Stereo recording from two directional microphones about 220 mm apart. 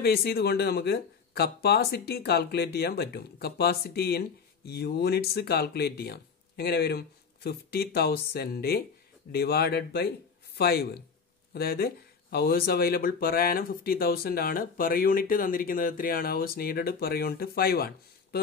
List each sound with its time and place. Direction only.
0.0 s speech: 45° left (ahead or behind)